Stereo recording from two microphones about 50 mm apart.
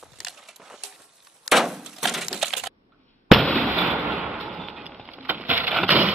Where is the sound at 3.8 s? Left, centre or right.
Centre.